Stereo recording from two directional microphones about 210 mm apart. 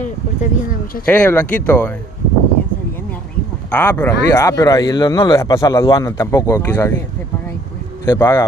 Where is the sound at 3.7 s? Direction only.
10° left (ahead or behind).